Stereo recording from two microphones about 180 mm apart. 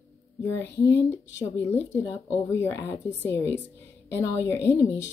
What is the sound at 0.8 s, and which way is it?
Speech, 75° left (ahead or behind).